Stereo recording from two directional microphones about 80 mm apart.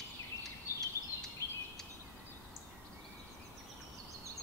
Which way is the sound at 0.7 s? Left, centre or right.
Left.